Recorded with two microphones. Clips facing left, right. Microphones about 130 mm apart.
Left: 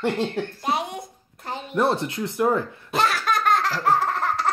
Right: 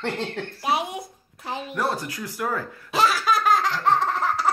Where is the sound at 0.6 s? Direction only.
5° right (ahead or behind).